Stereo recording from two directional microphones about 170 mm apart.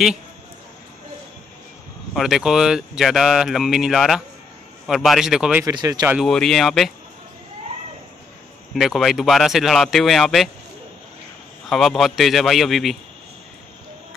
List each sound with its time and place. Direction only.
2.1 s speech: centre (ahead or behind)
5.7 s speech: 20° right (ahead or behind)
6.1 s speech: centre (ahead or behind)
8.7 s speech: centre (ahead or behind)
11.6 s speech: centre (ahead or behind)